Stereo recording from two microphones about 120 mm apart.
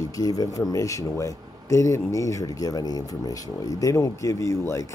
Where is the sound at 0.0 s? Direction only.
30° left (ahead or behind).